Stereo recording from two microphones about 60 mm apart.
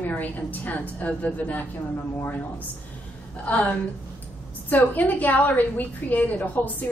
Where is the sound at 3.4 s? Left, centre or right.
Left.